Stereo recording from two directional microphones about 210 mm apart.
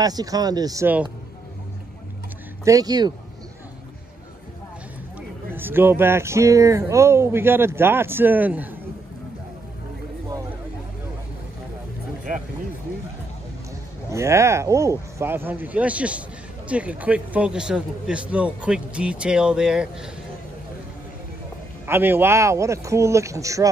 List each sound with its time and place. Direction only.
0.0 s speech: 15° right (ahead or behind)
2.6 s speech: 15° right (ahead or behind)
5.5 s speech: 10° right (ahead or behind)
14.1 s speech: 15° right (ahead or behind)
21.8 s speech: 10° right (ahead or behind)